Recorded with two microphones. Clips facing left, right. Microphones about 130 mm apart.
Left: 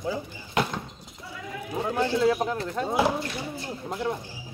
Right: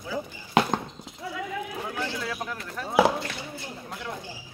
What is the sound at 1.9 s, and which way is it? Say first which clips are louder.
Speech: left 12 dB; 25° left (ahead or behind).